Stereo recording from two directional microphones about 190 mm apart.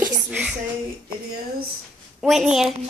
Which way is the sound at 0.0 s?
5° right (ahead or behind).